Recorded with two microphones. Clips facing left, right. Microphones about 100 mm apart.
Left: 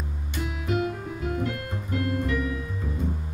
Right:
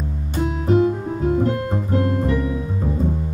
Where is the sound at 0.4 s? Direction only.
35° right (ahead or behind).